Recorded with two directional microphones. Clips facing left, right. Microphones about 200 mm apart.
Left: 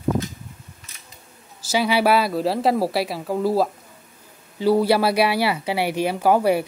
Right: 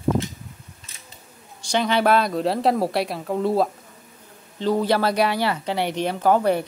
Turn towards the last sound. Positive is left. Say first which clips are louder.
# left 1 dB
turn(degrees=10)  # may be behind; listen again after turning